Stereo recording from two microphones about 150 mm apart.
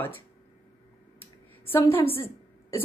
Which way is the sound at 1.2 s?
15° left (ahead or behind).